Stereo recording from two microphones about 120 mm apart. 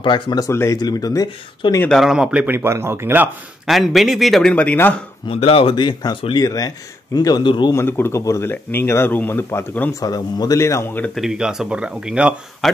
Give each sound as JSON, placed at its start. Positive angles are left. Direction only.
{"t": 0.0, "sound": "speech", "side_deg": 40}
{"t": 0.5, "sound": "speech", "side_deg": 20}
{"t": 1.9, "sound": "speech", "side_deg": 0}
{"t": 3.6, "sound": "speech", "side_deg": 0}
{"t": 5.3, "sound": "speech", "side_deg": 55}
{"t": 7.7, "sound": "speech", "side_deg": 20}
{"t": 10.0, "sound": "speech", "side_deg": 35}
{"t": 11.1, "sound": "speech", "side_deg": -5}